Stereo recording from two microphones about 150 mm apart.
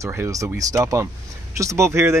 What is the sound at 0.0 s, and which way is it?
Speech, 20° right (ahead or behind).